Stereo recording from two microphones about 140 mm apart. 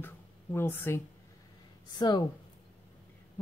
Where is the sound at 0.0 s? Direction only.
15° left (ahead or behind).